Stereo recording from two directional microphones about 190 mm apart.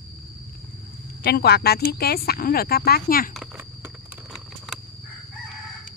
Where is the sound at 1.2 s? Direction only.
60° left (ahead or behind).